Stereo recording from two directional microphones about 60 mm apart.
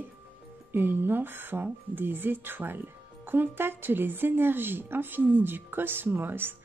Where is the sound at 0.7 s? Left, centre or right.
Right.